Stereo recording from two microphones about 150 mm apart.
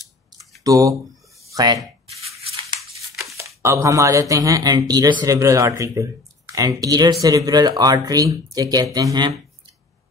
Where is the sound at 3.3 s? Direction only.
20° right (ahead or behind).